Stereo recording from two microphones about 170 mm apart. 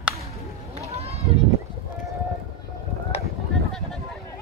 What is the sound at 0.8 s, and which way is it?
Run, 35° right (ahead or behind).